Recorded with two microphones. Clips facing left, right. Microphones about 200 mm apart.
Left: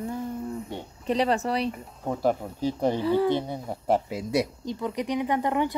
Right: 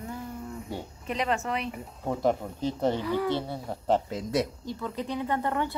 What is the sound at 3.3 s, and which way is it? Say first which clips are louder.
Speech: left 3 dB; 15° left (ahead or behind).